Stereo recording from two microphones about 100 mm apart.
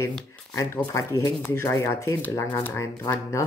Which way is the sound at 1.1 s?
30° left (ahead or behind).